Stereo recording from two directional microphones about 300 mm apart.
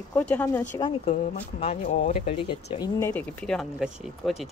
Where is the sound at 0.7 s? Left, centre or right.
Centre.